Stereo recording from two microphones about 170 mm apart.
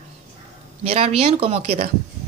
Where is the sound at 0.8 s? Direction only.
35° right (ahead or behind).